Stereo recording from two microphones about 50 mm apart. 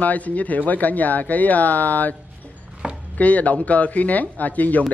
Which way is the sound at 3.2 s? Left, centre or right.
Left.